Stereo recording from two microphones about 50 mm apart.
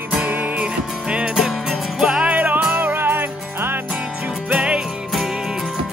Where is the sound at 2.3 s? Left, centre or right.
Right.